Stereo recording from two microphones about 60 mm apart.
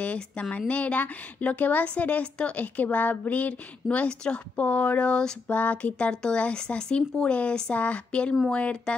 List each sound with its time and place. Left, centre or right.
0.0 s speech: left